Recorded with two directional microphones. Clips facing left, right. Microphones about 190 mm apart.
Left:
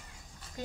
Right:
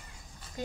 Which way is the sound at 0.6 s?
10° right (ahead or behind).